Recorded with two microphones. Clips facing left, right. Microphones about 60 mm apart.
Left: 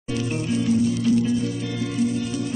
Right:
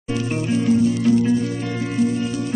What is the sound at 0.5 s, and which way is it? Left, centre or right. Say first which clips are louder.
Music: right 4 dB; right.